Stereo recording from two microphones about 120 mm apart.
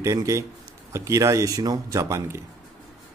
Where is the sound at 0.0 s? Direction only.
25° right (ahead or behind).